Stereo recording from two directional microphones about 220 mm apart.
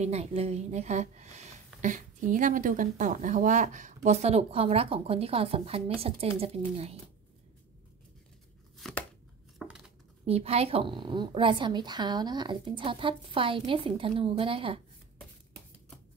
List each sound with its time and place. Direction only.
0.0 s a woman's voice: 30° right (ahead or behind)
8.7 s chopping: centre (ahead or behind)
9.6 s dishes: 5° right (ahead or behind)
10.2 s a woman's voice: 30° right (ahead or behind)